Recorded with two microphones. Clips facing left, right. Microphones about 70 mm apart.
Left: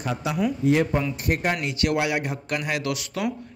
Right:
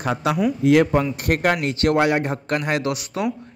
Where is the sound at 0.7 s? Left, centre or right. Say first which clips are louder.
Right 6 dB; right.